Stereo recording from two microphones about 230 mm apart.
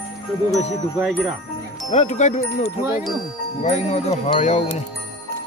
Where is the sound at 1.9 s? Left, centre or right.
Left.